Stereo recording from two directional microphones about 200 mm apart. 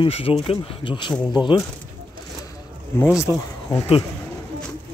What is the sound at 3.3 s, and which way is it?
Speech, 15° right (ahead or behind).